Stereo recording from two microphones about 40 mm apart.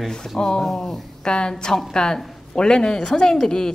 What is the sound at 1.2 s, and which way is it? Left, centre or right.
A woman's voice, left.